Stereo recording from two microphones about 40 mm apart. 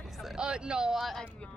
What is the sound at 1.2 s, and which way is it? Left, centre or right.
Speech, left.